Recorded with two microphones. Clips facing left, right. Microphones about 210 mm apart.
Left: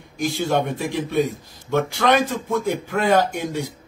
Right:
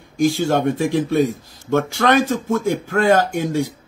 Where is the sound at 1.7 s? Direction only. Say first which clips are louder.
Right 2 dB; 45° right (ahead or behind).